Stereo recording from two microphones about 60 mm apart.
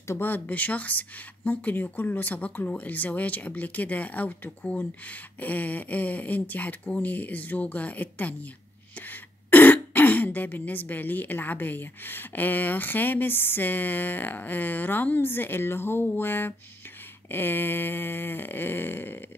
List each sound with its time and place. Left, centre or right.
0.2 s speech: left